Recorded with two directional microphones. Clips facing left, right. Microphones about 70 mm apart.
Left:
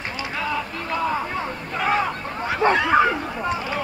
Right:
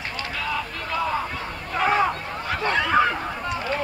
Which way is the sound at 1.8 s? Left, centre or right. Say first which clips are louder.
Right 1 dB; centre.